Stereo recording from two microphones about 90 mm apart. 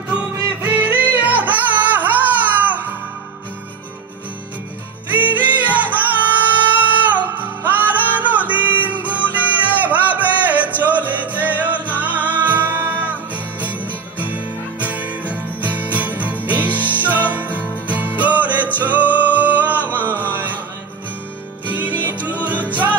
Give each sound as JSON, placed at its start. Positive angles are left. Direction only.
{"t": 0.8, "sound": "music", "side_deg": -20}
{"t": 5.1, "sound": "music", "side_deg": -20}
{"t": 20.0, "sound": "music", "side_deg": 20}
{"t": 20.2, "sound": "chant", "side_deg": -20}
{"t": 21.7, "sound": "music", "side_deg": -20}